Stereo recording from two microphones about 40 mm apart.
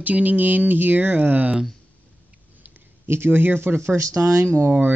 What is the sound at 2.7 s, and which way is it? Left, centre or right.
Speech, right.